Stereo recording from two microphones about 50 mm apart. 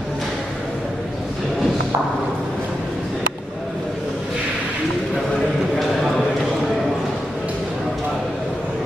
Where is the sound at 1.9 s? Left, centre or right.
Right.